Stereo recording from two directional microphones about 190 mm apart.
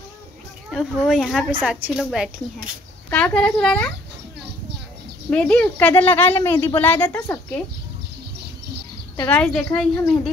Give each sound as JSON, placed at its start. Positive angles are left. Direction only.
{"t": 0.7, "sound": "a woman's voice", "side_deg": 0}
{"t": 5.3, "sound": "speech", "side_deg": 5}
{"t": 9.1, "sound": "a woman's voice", "side_deg": 10}